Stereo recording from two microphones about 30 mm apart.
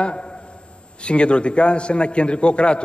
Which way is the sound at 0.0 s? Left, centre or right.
Left.